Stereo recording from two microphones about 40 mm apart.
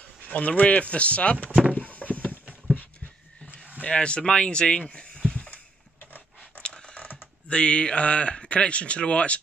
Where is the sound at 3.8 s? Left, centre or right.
Left.